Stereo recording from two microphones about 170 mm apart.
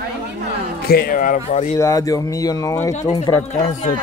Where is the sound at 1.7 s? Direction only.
20° left (ahead or behind).